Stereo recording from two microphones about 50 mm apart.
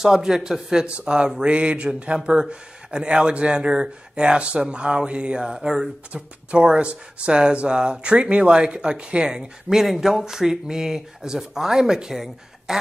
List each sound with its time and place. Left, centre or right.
0.0 s speech: centre
1.4 s mantra: right
2.2 s speech: centre
6.1 s speech: right